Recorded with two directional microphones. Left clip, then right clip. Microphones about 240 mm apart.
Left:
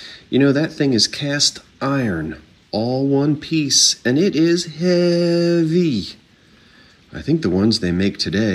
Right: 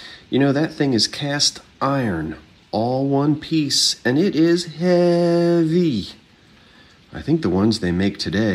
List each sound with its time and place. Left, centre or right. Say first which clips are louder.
0.4 s mantra: left 2 dB; centre
1.5 s speech: right 1 dB; centre
2.0 s speech: left 1 dB; right
2.7 s a man's voice: even; centre
3.2 s mantra: left 1 dB; centre
5.9 s a man's voice: left 1 dB; centre
7.2 s mantra: left 1 dB; centre